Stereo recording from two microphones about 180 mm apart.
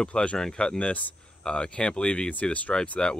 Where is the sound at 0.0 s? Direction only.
5° left (ahead or behind).